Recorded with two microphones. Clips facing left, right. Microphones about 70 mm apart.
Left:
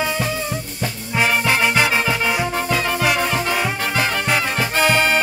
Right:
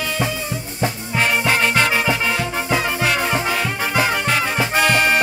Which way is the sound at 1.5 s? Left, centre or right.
Centre.